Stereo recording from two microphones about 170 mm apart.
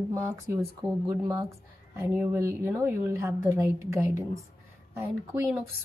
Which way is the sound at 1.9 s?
10° right (ahead or behind).